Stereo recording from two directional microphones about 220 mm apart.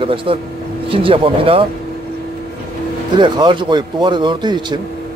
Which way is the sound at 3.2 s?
20° right (ahead or behind).